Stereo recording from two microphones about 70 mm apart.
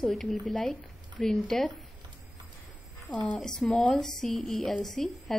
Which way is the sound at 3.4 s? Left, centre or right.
Centre.